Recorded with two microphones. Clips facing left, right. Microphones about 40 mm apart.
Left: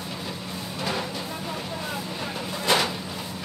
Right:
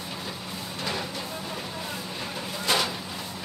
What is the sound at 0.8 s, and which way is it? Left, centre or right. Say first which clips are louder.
Music: left 3 dB; centre.